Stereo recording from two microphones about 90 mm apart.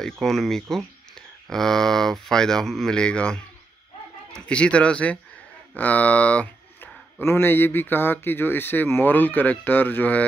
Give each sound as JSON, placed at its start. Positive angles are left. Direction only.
{"t": 0.0, "sound": "speech", "side_deg": 5}
{"t": 4.5, "sound": "speech", "side_deg": 15}